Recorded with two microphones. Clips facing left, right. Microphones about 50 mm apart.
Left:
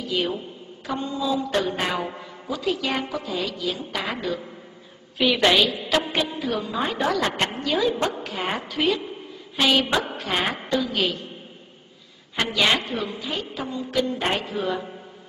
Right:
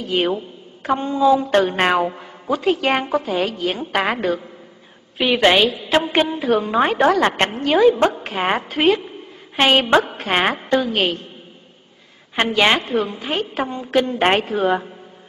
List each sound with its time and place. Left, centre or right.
0.0 s a woman's voice: right
5.1 s a woman's voice: right
6.5 s a woman's voice: right
12.4 s a woman's voice: right